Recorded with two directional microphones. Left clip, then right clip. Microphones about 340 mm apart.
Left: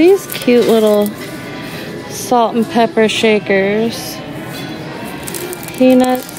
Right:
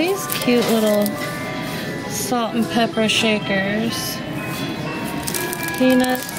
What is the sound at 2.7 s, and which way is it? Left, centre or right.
Speech, centre.